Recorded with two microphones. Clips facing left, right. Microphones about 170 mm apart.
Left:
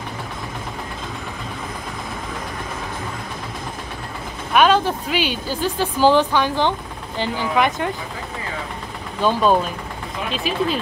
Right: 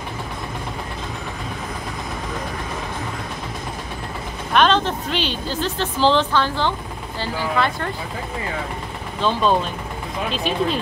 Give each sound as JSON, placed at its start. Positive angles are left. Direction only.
{"t": 4.6, "sound": "speech", "side_deg": 10}
{"t": 9.2, "sound": "speech", "side_deg": 10}